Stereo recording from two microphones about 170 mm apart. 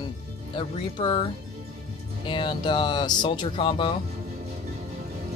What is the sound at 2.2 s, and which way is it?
Speech, 30° left (ahead or behind).